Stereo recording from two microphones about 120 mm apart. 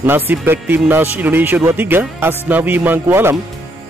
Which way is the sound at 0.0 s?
15° right (ahead or behind).